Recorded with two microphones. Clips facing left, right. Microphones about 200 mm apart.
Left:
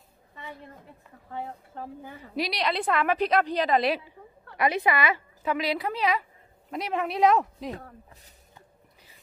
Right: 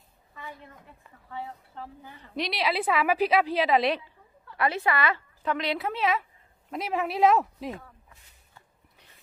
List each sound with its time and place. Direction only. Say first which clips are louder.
1.3 s speech: left 2 dB; 50° left (ahead or behind)
2.3 s a woman's voice: even; centre (ahead or behind)
4.6 s a woman's voice: left 2 dB; 15° left (ahead or behind); by 7.7 s centre (ahead or behind)